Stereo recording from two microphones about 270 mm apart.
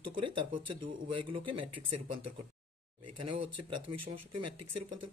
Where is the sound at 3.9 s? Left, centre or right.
Right.